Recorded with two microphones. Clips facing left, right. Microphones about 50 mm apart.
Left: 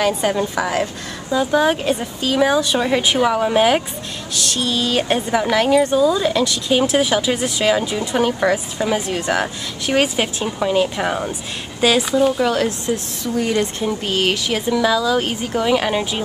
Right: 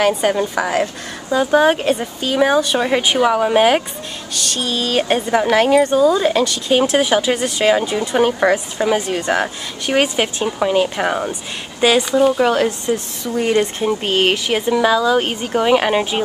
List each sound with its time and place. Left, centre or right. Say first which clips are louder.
0.0 s a woman's voice: right 2 dB; centre
8.9 s speech: right 2 dB; centre
9.3 s a woman's voice: right 1 dB; centre
12.4 s a woman's voice: right 3 dB; centre
12.8 s speech: right 2 dB; centre
13.3 s speech: right 3 dB; centre
14.0 s speech: right 2 dB; right